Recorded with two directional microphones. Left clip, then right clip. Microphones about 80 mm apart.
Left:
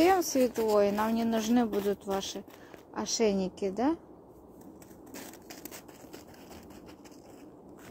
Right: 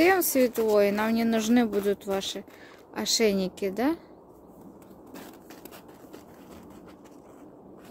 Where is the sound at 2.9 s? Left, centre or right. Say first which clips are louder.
Right 4 dB; right.